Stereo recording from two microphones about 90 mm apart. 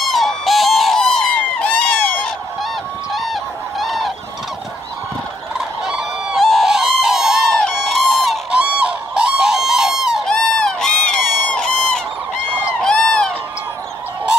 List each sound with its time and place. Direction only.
0.1 s a sound: centre (ahead or behind)
3.1 s goose: centre (ahead or behind)
5.9 s fowl: 5° right (ahead or behind)
6.4 s a sound: centre (ahead or behind)
8.5 s goose: 10° right (ahead or behind)
10.2 s honk: 10° left (ahead or behind)
12.8 s run: 10° left (ahead or behind)